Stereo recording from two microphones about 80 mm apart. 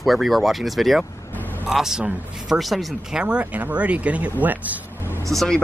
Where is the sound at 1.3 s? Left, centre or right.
Left.